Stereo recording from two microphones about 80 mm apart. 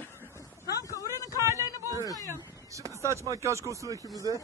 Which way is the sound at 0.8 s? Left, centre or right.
Left.